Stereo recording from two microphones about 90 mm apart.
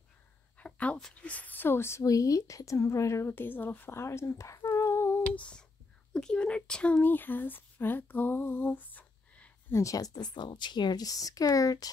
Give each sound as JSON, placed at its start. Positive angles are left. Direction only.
{"t": 0.6, "sound": "a woman's voice", "side_deg": 15}
{"t": 5.3, "sound": "speech", "side_deg": 15}
{"t": 9.8, "sound": "speech", "side_deg": 40}